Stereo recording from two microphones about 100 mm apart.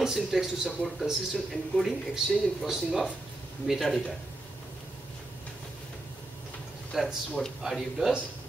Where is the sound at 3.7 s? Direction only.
Centre (ahead or behind).